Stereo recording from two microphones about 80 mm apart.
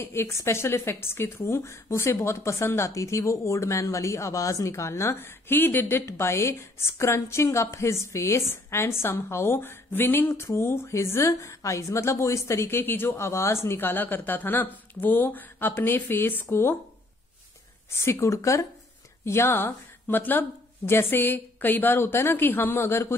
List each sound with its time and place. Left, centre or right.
0.0 s speech: left
18.0 s speech: left
19.2 s speech: left